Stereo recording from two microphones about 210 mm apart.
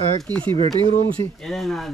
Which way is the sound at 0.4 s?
25° right (ahead or behind).